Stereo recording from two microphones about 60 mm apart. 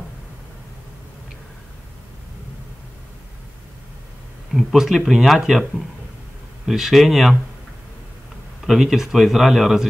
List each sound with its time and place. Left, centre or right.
4.7 s speech: centre
8.6 s speech: centre